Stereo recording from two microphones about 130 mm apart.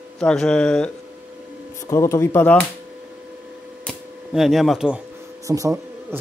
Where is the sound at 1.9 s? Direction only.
20° left (ahead or behind).